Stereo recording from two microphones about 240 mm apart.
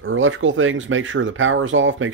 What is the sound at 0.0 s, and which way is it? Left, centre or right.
Speech, right.